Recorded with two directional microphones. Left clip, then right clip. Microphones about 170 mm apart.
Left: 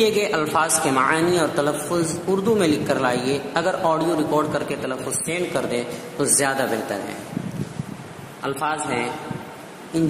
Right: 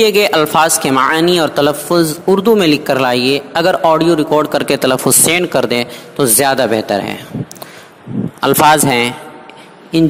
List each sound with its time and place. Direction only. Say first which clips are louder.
0.0 s a man's voice: right 9 dB; 45° right (ahead or behind)
4.6 s a man's voice: right 14 dB; 60° right (ahead or behind)
8.4 s speech: right 15 dB; 65° right (ahead or behind)